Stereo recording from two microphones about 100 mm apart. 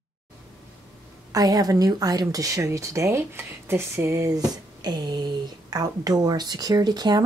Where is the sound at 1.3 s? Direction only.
40° right (ahead or behind).